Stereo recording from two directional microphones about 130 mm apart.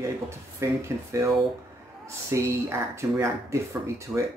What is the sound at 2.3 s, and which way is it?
Speech, 20° right (ahead or behind).